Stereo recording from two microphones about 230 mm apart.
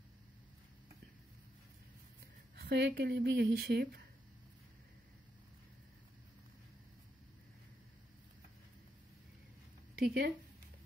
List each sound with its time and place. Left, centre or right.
2.5 s speech: right
9.9 s speech: right